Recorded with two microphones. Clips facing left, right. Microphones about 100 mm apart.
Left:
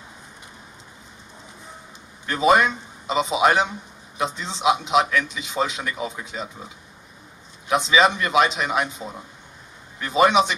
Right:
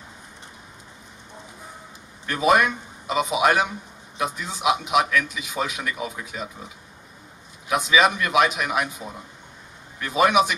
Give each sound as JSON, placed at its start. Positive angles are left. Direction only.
{"t": 2.2, "sound": "a man's voice", "side_deg": 25}
{"t": 7.6, "sound": "a man's voice", "side_deg": 25}